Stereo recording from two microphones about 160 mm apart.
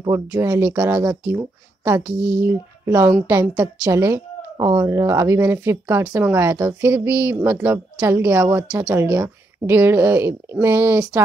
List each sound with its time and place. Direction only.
0.1 s a woman's voice: 15° right (ahead or behind)